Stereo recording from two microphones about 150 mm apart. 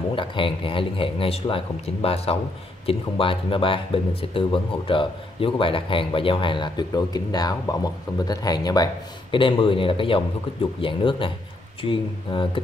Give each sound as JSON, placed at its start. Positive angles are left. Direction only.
{"t": 0.1, "sound": "speech", "side_deg": 35}